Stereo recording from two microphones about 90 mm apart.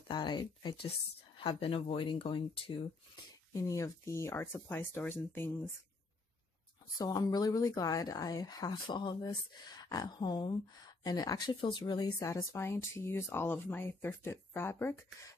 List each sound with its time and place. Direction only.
0.1 s speech: 55° left (ahead or behind)
1.4 s speech: 85° left
3.6 s speech: 35° left (ahead or behind)
7.0 s speech: 45° left (ahead or behind)
9.2 s speech: 45° left (ahead or behind); by 15.0 s 25° left (ahead or behind)